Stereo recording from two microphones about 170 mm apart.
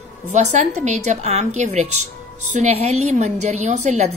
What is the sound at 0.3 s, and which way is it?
A woman's voice, 45° right (ahead or behind).